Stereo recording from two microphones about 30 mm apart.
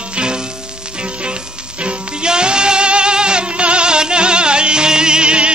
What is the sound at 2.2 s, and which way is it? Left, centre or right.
Music, right.